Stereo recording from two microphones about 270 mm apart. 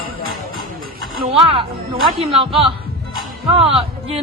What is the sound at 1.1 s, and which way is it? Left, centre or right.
A man's voice, right.